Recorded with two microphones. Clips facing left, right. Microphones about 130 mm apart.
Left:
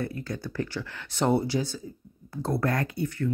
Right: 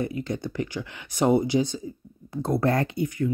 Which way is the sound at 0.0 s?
20° right (ahead or behind).